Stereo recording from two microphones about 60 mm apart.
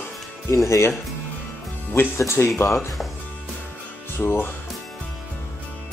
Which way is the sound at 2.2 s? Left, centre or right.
Left.